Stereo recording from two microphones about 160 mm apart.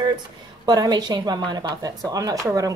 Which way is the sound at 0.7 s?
25° right (ahead or behind).